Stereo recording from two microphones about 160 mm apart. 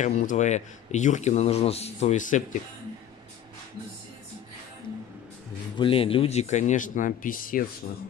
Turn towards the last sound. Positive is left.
turn(degrees=60)  # may be behind; listen again after turning